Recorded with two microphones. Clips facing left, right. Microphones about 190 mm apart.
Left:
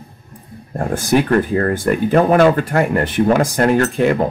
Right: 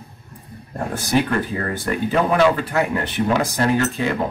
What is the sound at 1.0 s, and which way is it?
Speech, 55° left (ahead or behind).